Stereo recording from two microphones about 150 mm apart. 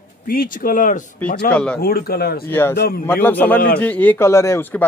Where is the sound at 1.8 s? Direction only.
90° left.